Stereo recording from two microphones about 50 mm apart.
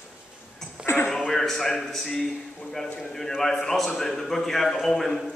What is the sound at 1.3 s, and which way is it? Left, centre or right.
A man's voice, centre.